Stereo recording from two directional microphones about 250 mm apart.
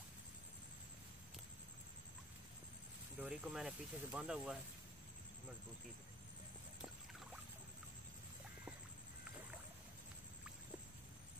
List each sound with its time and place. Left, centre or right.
3.2 s speech: centre